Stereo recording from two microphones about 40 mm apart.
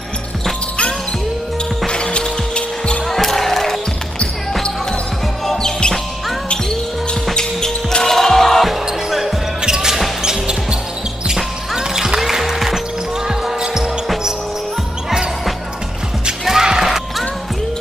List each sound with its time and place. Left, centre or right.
1.9 s music: left
3.1 s basketball bounce: centre
7.3 s basketball bounce: centre
9.6 s music: centre
10.2 s basketball bounce: centre
11.3 s music: centre
13.3 s basketball bounce: centre
16.4 s music: centre